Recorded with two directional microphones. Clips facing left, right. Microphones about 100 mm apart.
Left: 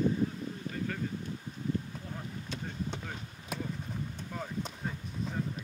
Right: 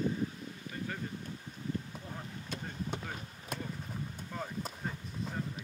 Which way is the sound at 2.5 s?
5° right (ahead or behind).